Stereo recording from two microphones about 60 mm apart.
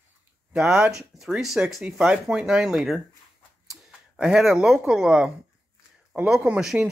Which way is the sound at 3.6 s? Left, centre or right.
Centre.